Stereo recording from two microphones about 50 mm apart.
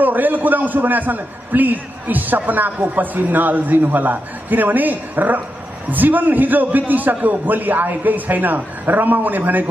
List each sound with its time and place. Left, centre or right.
0.0 s a man's voice: right